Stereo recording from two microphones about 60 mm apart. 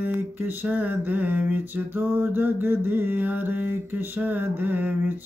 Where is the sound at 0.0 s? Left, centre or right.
Right.